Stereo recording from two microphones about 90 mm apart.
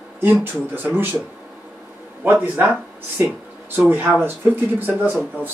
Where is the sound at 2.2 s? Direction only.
20° right (ahead or behind).